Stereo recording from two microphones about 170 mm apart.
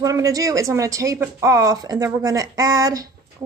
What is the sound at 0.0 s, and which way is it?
A woman's voice, 20° right (ahead or behind).